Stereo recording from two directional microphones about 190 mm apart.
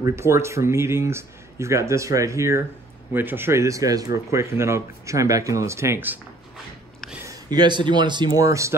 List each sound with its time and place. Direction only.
0.0 s speech: 15° right (ahead or behind)
7.2 s a man's voice: 20° right (ahead or behind)